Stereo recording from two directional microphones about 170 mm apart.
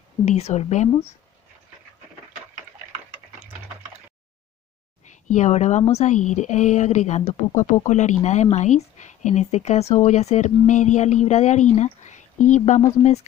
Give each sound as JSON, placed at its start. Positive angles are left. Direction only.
{"t": 0.2, "sound": "speech", "side_deg": 40}
{"t": 5.0, "sound": "speech", "side_deg": 45}